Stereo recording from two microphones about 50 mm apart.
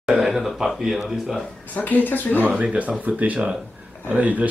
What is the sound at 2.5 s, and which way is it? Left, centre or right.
Speech, right.